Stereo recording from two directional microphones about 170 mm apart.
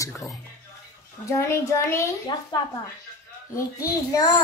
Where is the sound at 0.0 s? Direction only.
20° left (ahead or behind).